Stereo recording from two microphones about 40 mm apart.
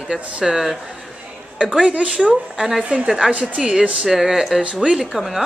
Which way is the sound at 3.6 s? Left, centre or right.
Right.